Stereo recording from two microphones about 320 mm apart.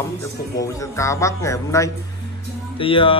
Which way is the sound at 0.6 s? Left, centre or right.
Centre.